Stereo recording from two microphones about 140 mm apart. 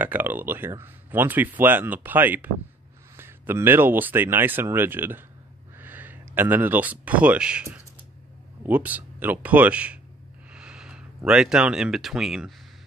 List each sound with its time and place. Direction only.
0.0 s speech: 15° right (ahead or behind)